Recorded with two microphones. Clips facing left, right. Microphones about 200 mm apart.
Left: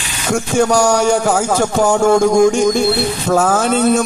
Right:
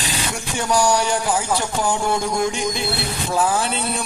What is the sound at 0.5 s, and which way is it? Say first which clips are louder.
A man's voice: left 6 dB; 45° left (ahead or behind).